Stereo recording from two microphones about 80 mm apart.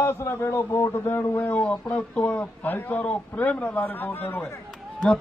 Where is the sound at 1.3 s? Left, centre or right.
Centre.